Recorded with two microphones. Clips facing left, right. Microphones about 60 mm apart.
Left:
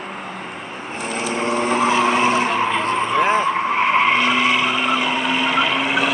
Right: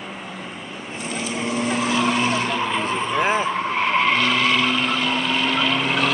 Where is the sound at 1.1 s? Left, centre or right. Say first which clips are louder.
Left 4 dB; left.